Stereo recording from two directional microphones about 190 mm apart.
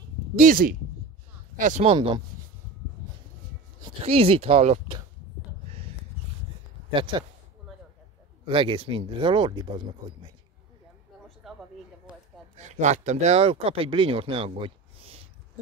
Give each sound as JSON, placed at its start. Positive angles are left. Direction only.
{"t": 0.4, "sound": "speech", "side_deg": -45}
{"t": 2.0, "sound": "speech", "side_deg": -25}
{"t": 4.0, "sound": "speech", "side_deg": -30}
{"t": 6.9, "sound": "speech", "side_deg": -25}
{"t": 8.5, "sound": "speech", "side_deg": -25}
{"t": 11.4, "sound": "a sound", "side_deg": 0}
{"t": 12.1, "sound": "speech", "side_deg": -35}